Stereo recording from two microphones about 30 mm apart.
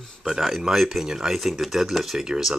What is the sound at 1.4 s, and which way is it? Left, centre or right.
Speech, centre.